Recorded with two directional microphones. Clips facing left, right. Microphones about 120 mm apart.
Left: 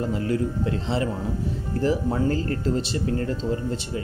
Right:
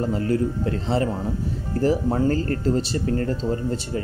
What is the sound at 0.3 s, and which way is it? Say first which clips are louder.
Speech: right 2 dB; 45° right (ahead or behind).